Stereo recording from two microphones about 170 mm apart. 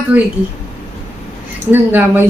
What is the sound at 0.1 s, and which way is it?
Speech, 10° right (ahead or behind).